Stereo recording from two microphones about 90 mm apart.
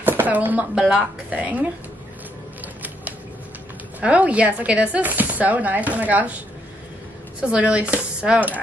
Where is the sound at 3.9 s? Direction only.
15° right (ahead or behind).